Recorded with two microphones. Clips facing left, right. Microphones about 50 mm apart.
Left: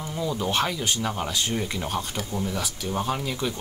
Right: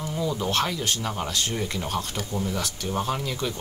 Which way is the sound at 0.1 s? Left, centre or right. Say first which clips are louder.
Even; centre.